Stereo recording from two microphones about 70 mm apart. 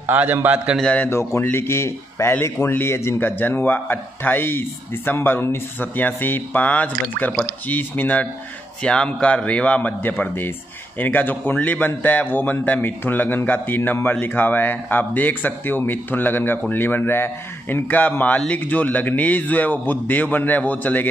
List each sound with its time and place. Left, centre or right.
0.0 s a man's voice: right
1.1 s a man's voice: left
8.8 s a man's voice: centre; by 17.8 s left
17.8 s a man's voice: left